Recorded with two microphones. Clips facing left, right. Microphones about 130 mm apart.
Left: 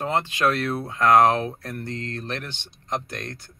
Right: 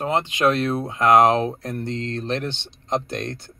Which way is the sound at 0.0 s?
20° right (ahead or behind).